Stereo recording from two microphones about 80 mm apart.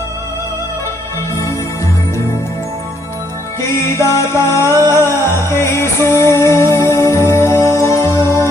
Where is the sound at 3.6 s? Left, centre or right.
Left.